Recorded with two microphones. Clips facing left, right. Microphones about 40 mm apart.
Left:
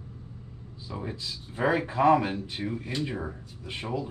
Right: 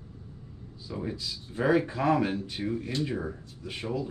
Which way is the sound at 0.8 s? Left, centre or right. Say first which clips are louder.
Right 1 dB; centre.